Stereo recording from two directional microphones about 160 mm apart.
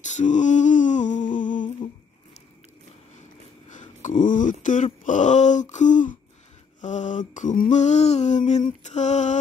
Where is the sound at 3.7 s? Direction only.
50° left (ahead or behind).